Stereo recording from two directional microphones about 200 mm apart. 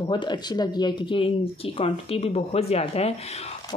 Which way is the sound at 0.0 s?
20° left (ahead or behind).